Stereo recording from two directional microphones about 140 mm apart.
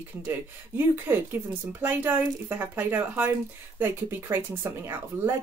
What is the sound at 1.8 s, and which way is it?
Speech, 15° right (ahead or behind).